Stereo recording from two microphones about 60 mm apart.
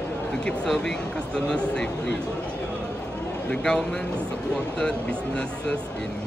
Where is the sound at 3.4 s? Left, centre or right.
Centre.